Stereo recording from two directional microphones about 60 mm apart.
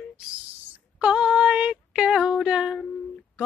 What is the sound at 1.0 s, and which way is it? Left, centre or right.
Female singing, centre.